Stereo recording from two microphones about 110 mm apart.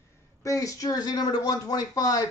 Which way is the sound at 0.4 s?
30° left (ahead or behind).